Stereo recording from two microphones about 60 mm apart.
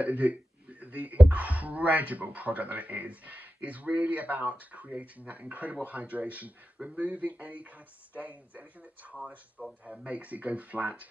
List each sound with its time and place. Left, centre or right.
0.0 s speech: right